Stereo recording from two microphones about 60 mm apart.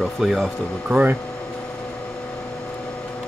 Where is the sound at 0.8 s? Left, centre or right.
Right.